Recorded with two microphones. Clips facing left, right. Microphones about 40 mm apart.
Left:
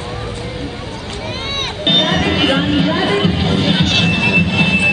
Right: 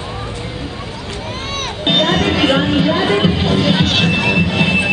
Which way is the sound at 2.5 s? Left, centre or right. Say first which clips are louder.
Right 1 dB; centre.